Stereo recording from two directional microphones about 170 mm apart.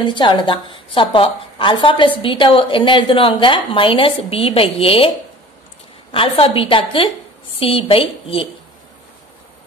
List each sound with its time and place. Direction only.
0.0 s a woman's voice: 25° left (ahead or behind)
6.1 s a woman's voice: 35° left (ahead or behind)